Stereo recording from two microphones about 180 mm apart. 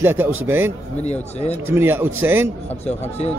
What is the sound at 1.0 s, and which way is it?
Speech, 40° left (ahead or behind).